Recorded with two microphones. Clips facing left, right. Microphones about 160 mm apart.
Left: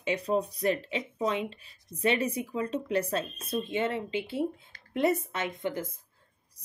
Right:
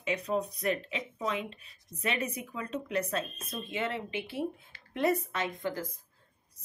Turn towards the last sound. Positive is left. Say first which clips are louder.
# left 1 dB
turn(degrees=20)  # may be behind; listen again after turning